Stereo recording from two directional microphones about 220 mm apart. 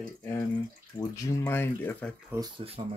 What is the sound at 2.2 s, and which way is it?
Speech, 15° right (ahead or behind).